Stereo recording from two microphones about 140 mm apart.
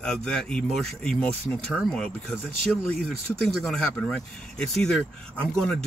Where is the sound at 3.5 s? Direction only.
Centre (ahead or behind).